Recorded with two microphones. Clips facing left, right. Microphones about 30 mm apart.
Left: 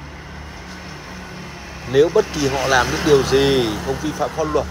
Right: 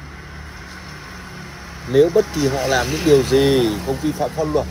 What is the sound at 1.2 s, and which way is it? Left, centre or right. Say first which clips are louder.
Vehicle: left 1 dB; left.